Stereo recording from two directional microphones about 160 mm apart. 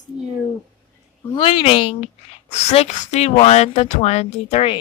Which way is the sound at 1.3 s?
35° left (ahead or behind).